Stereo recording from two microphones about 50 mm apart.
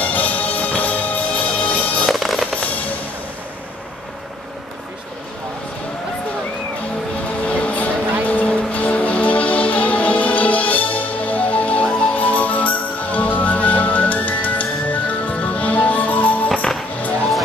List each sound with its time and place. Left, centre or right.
0.0 s music: left
2.0 s music: centre
2.5 s music: left
7.4 s music: left